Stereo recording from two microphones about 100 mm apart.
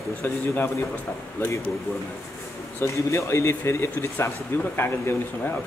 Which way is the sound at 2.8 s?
30° left (ahead or behind).